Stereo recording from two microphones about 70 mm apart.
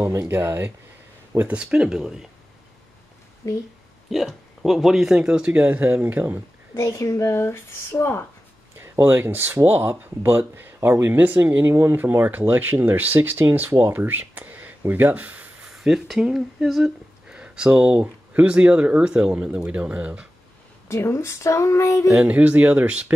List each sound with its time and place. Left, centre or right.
0.0 s speech: right
1.5 s speech: centre
3.4 s speech: left
4.1 s speech: centre; by 6.2 s right
6.7 s speech: left
9.0 s speech: right
13.9 s a sound: right
14.9 s speech: right
15.6 s speech: centre
17.3 s a sound: centre
18.0 s speech: right
20.9 s speech: left
22.2 s speech: right